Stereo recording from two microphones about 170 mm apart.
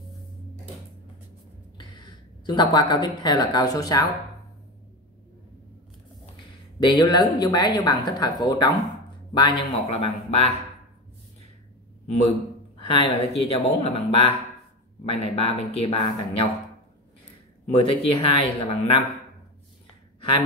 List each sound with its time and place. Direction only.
1.8 s speech: 25° left (ahead or behind)
6.8 s a woman's voice: 25° left (ahead or behind)
12.1 s speech: 35° left (ahead or behind)
17.6 s speech: 35° left (ahead or behind)
20.2 s a sound: 30° left (ahead or behind)